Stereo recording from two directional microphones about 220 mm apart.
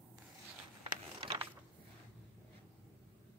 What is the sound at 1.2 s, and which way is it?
Mechanisms, 25° right (ahead or behind).